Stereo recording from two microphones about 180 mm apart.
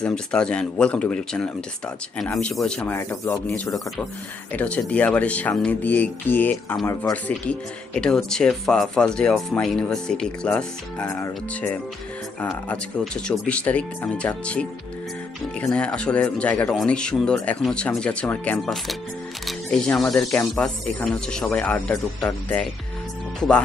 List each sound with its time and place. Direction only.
0.0 s speech: 5° left (ahead or behind)
21.9 s speech: 15° left (ahead or behind)